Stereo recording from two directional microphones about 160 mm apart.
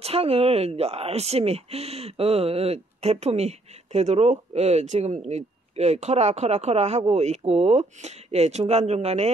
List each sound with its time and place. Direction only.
0.0 s speech: 40° right (ahead or behind)